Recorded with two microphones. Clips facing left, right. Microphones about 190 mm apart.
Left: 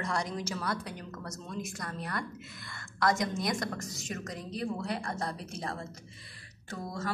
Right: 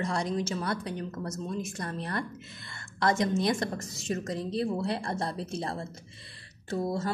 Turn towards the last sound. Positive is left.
turn(degrees=-30)  # may be behind; listen again after turning